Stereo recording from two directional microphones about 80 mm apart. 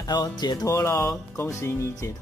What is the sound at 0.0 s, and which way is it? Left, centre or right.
Speech, left.